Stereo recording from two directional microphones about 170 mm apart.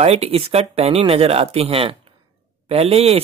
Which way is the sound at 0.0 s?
35° right (ahead or behind).